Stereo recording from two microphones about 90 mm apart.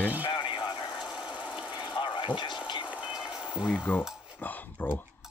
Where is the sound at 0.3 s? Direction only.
55° left (ahead or behind).